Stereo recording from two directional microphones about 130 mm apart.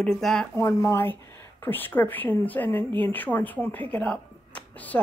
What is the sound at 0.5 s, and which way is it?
Speech, 20° left (ahead or behind).